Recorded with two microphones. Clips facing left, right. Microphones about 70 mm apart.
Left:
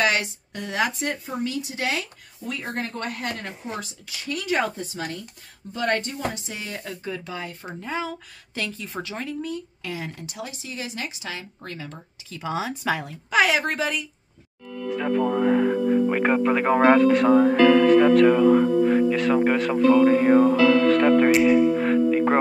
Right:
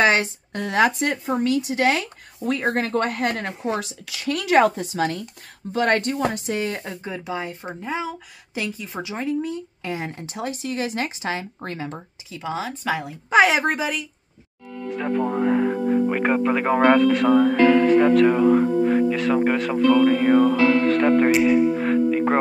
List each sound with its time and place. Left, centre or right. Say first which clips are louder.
0.0 s speech: right 4 dB; right
1.0 s speech: right 6 dB; right
1.8 s speech: right 7 dB; right
3.6 s speech: right 7 dB; right
5.7 s speech: right 5 dB; right
6.8 s speech: right 1 dB; right
7.8 s speech: right 1 dB; centre; by 10.5 s right
10.6 s speech: right 8 dB; right
12.4 s speech: even; centre
13.3 s speech: right 4 dB; right
13.7 s speech: even; centre
20.9 s music: even; centre